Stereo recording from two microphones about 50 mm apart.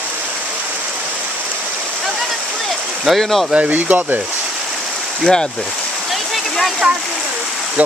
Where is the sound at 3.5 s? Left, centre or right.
Right.